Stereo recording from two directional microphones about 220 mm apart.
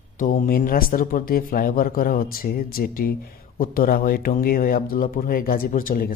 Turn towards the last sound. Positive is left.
turn(degrees=40)  # may be behind; listen again after turning